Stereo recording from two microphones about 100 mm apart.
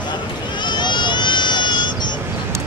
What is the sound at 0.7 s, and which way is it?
Run, 50° left (ahead or behind).